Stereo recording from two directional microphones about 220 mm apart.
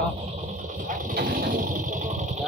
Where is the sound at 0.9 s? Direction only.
35° right (ahead or behind).